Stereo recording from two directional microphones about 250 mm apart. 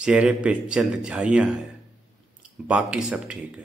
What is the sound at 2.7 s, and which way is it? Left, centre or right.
Speech, centre.